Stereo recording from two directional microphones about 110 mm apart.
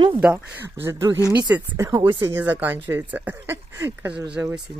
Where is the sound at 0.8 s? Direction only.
25° right (ahead or behind).